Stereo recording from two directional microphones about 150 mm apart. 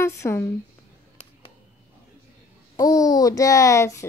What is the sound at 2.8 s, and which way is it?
Speech, 25° left (ahead or behind).